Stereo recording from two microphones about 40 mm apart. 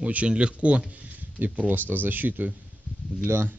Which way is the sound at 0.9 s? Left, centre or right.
Right.